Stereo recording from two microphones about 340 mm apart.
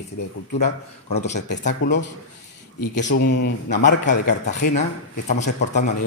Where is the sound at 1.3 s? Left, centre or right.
Left.